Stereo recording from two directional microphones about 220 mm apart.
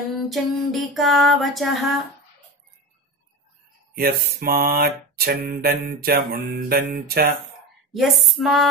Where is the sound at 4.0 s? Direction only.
45° right (ahead or behind).